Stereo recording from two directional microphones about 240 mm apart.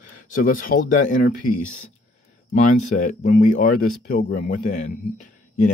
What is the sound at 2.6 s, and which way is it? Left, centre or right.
Speech, left.